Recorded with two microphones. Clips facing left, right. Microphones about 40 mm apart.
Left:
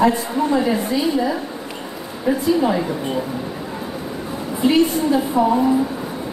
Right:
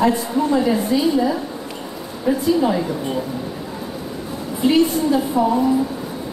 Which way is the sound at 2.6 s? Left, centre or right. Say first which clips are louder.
Even; left.